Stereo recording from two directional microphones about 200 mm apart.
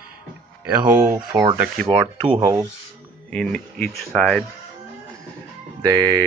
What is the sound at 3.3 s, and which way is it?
Speech, 5° left (ahead or behind).